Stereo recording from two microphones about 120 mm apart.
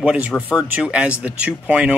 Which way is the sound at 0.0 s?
10° right (ahead or behind).